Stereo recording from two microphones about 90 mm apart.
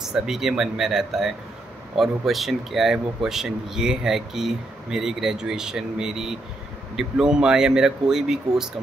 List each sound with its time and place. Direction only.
0.0 s a man's voice: 5° right (ahead or behind)